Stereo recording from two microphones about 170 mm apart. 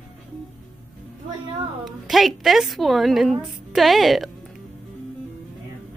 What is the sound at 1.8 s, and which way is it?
A woman's voice, centre (ahead or behind).